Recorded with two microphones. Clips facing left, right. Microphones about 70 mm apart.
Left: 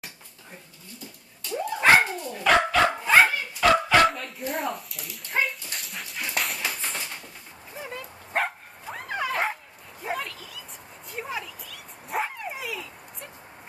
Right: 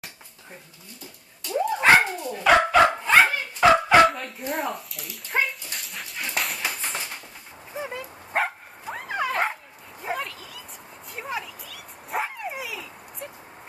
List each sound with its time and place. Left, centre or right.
1.8 s dog: centre
3.0 s dog: centre
3.6 s dog: centre
4.1 s dog: centre
7.7 s dog: right
8.3 s bow-wow: centre
10.0 s a sound: centre
11.1 s dog: centre